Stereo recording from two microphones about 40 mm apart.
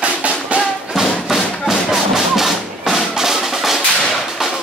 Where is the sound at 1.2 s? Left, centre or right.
Centre.